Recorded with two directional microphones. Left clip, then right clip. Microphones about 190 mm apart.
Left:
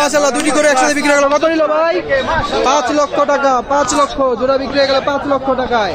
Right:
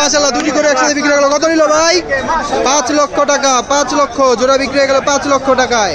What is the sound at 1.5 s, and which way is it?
Speech, 25° right (ahead or behind).